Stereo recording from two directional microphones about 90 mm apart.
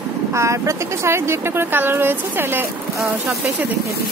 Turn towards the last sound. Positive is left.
turn(degrees=-25)  # may be behind; listen again after turning